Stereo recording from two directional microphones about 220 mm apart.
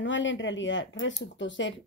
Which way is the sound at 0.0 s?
55° left (ahead or behind).